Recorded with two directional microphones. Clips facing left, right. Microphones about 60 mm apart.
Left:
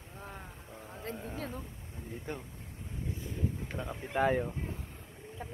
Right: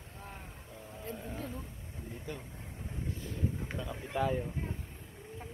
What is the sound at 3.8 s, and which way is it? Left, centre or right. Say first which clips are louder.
Speech: left 3 dB; left.